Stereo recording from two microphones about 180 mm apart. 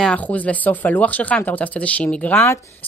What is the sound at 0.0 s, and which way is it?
A woman's voice, 5° left (ahead or behind).